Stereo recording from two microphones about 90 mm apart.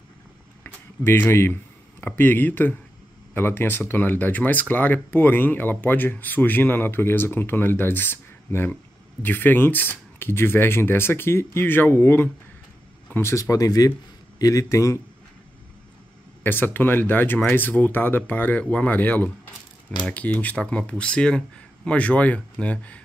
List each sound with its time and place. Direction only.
0.7 s speech: 25° left (ahead or behind)
16.4 s speech: 20° left (ahead or behind)